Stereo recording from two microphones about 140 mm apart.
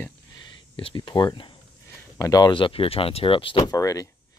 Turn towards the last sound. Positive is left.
turn(degrees=25)  # may be behind; listen again after turning